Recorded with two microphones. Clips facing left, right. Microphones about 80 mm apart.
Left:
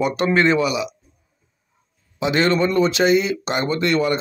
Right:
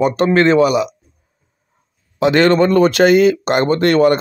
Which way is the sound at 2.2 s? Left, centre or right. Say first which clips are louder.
Right 6 dB; right.